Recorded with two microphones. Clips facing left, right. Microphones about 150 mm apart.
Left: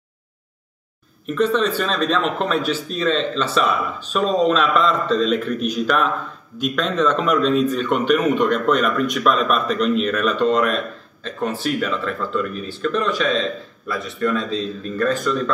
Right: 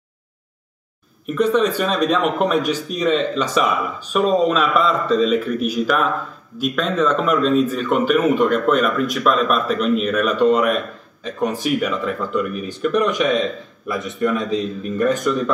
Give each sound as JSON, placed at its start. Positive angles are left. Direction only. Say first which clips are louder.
{"t": 1.2, "sound": "a man's voice", "louder": "right 2 dB", "side_deg": -10}